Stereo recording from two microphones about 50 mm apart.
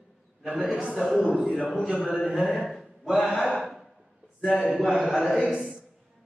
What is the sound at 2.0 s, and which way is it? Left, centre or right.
Speech, centre.